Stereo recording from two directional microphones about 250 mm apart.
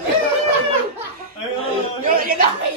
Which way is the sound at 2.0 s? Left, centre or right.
Right.